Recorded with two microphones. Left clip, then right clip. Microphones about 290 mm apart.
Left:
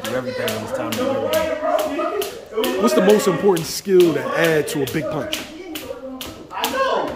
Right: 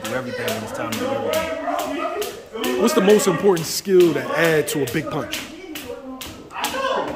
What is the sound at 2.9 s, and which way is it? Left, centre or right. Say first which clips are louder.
Speech: even; centre.